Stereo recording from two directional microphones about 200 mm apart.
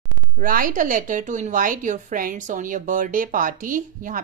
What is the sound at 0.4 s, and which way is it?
A woman's voice, 40° right (ahead or behind).